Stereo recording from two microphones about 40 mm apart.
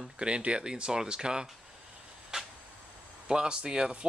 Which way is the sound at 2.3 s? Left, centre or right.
Centre.